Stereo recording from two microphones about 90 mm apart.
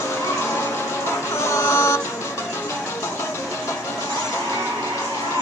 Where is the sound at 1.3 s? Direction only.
30° left (ahead or behind).